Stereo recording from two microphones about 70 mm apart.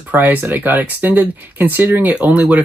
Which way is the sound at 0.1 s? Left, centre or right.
Right.